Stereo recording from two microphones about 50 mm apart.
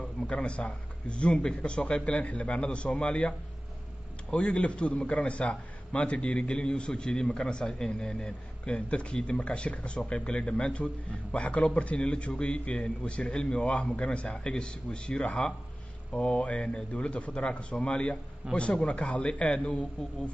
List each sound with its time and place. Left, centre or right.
0.3 s a man's voice: left